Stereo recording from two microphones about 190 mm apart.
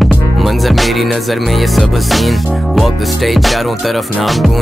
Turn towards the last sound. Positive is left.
turn(degrees=0)  # may be behind; listen again after turning